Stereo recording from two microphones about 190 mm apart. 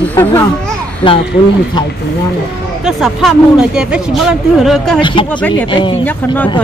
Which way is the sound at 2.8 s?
Centre (ahead or behind).